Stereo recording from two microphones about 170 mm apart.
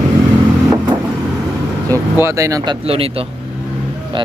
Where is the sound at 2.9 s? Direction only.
35° right (ahead or behind).